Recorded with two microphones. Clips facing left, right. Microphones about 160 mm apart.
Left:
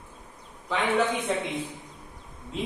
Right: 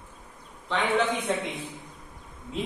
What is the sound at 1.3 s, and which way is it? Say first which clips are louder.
Speech: even; centre (ahead or behind).